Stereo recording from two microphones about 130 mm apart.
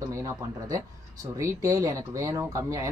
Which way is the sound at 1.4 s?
25° right (ahead or behind).